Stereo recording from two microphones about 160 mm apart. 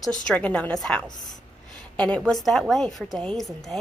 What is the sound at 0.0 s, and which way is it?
A woman's voice, 5° left (ahead or behind).